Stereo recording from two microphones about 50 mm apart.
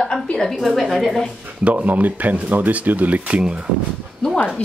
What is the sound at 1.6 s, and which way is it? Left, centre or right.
Speech, right.